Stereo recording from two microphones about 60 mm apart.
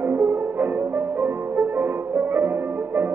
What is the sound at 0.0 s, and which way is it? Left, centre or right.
French horn, right.